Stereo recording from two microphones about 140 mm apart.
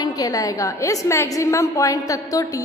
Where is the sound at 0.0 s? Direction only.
25° left (ahead or behind).